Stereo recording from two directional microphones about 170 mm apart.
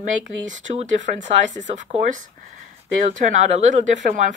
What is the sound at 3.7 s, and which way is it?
Speech, 45° right (ahead or behind).